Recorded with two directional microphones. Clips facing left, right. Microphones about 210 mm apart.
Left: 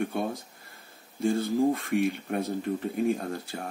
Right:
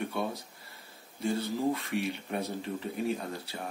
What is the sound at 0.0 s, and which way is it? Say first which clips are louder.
Speech: left 4 dB; 50° left (ahead or behind).